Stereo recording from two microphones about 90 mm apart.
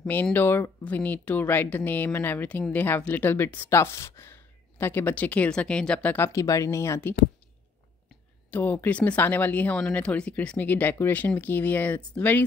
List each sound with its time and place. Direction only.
0.0 s speech: 20° left (ahead or behind)
6.1 s speech: 30° left (ahead or behind)
8.5 s speech: 15° left (ahead or behind)